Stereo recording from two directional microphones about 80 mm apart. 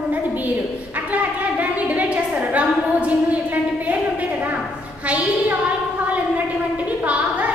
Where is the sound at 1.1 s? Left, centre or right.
Centre.